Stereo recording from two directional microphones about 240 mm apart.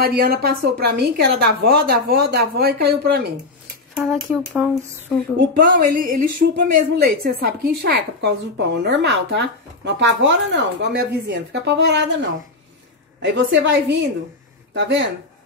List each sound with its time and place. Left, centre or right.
0.0 s a woman's voice: right
3.9 s speech: centre
5.7 s a woman's voice: right